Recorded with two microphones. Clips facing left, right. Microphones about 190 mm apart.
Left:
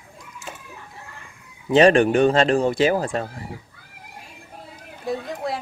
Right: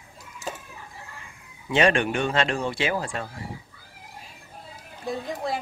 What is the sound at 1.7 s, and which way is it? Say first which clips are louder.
Speech: left 7 dB; 35° left (ahead or behind).